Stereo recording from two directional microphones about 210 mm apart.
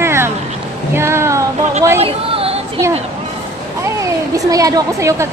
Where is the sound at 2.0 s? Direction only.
25° right (ahead or behind).